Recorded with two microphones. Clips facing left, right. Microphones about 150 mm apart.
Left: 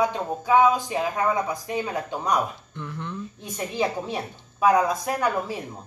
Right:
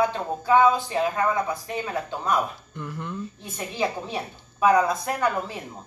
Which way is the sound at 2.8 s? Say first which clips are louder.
Right 1 dB; 5° right (ahead or behind).